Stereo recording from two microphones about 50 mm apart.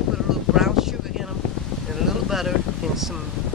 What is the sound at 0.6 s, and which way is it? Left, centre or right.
Boat, centre.